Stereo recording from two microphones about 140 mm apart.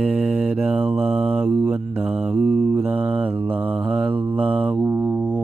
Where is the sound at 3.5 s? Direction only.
40° right (ahead or behind).